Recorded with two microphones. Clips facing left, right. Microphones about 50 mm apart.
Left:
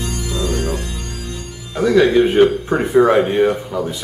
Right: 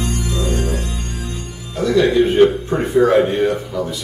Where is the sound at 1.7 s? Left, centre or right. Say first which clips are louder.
Left 2 dB; left.